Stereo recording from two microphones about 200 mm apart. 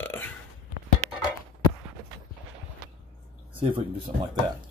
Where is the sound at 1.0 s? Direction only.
35° right (ahead or behind).